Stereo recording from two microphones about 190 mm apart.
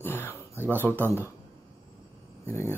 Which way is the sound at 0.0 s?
10° left (ahead or behind).